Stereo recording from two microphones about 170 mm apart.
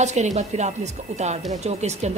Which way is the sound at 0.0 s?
40° right (ahead or behind).